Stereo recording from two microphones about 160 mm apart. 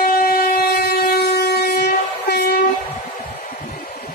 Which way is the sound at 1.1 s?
85° left.